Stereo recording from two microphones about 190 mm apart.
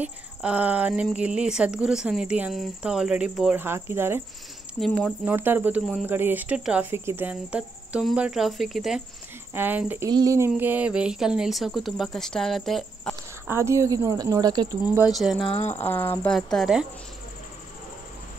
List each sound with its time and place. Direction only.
0.0 s speech: 5° right (ahead or behind)
4.7 s speech: centre (ahead or behind)
5.2 s speech: 10° right (ahead or behind)
13.5 s speech: 15° right (ahead or behind)
15.0 s speech: centre (ahead or behind)
15.4 s speech: 35° left (ahead or behind)
15.8 s speech: 10° left (ahead or behind)